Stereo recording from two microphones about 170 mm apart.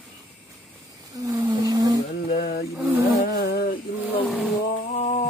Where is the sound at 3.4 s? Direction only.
65° left (ahead or behind).